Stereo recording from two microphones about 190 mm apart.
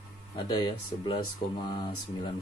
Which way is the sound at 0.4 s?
20° left (ahead or behind).